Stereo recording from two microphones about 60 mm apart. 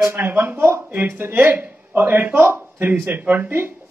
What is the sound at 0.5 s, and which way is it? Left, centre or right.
A man's voice, right.